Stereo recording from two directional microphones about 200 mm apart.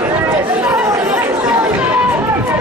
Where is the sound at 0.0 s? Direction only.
10° right (ahead or behind).